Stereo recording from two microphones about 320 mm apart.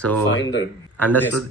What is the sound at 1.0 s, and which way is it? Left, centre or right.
Speech, centre.